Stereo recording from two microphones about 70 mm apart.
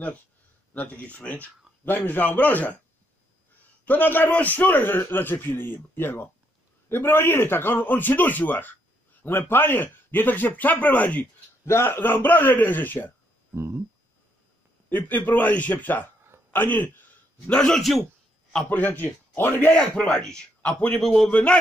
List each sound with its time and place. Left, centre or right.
0.7 s a man's voice: left
3.8 s a man's voice: left
11.6 s a man's voice: left
13.6 s speech: right
14.9 s a man's voice: left
17.5 s a man's voice: centre
18.7 s a man's voice: left
19.7 s a man's voice: centre
21.0 s a man's voice: centre
21.3 s a man's voice: centre